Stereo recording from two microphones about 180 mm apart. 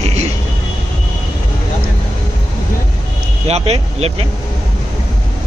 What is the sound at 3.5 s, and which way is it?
Speech, 35° right (ahead or behind).